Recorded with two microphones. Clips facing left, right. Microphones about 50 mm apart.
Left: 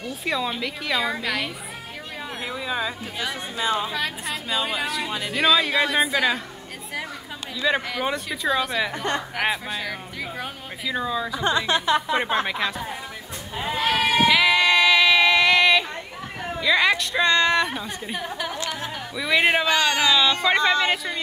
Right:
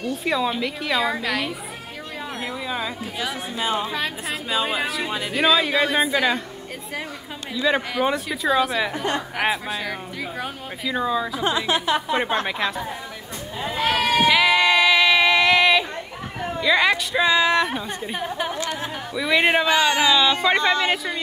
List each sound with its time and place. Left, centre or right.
0.0 s speech: centre
4.3 s speech: centre
7.6 s speech: centre
11.5 s a woman's voice: right
12.1 s speech: centre
13.7 s sheep: centre
14.0 s music: centre
16.5 s speech: centre